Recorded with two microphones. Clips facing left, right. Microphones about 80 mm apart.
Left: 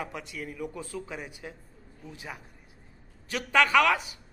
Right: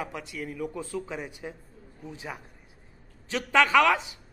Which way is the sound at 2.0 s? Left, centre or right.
Centre.